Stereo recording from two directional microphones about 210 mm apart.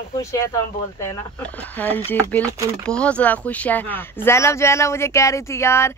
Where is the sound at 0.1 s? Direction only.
15° left (ahead or behind).